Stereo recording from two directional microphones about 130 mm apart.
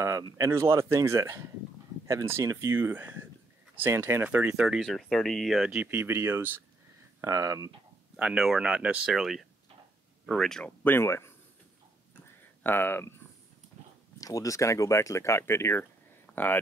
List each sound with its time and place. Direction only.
0.0 s speech: 25° right (ahead or behind); by 5.9 s 5° right (ahead or behind)
5.9 s speech: 15° right (ahead or behind)
8.2 s speech: 5° right (ahead or behind)
10.8 s speech: 15° left (ahead or behind)
12.6 s speech: 15° left (ahead or behind)
14.2 s speech: 25° left (ahead or behind)
16.3 s a sound: 5° left (ahead or behind)